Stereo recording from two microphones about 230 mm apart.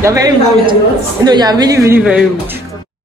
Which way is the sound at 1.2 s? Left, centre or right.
Centre.